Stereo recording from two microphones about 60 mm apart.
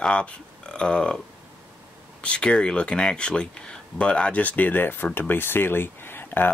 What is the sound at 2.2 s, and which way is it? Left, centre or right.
Speech, centre.